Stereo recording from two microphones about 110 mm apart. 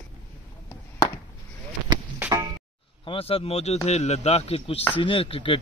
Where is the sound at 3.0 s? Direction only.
60° left (ahead or behind).